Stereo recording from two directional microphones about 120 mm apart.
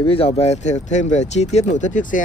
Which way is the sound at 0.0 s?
50° left (ahead or behind).